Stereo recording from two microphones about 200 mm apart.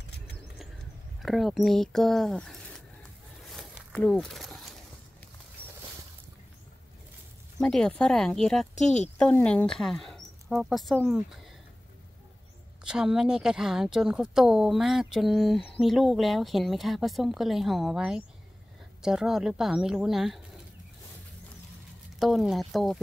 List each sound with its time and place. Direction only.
1.2 s a sound: centre (ahead or behind)
7.6 s speech: 5° left (ahead or behind)
8.7 s speech: 35° left (ahead or behind)
9.2 s speech: 5° left (ahead or behind)
12.8 s speech: 5° right (ahead or behind)
22.2 s speech: centre (ahead or behind)